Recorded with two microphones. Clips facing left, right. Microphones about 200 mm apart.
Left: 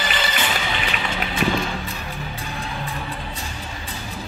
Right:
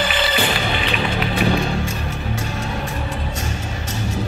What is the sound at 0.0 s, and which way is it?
Music, 60° right (ahead or behind).